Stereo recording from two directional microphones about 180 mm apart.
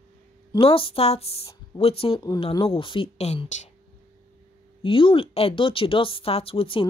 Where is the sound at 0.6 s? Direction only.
30° left (ahead or behind).